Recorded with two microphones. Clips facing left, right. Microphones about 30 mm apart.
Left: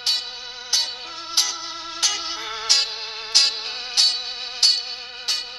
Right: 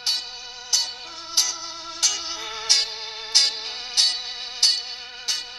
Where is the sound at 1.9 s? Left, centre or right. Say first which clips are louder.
Left 1 dB; centre.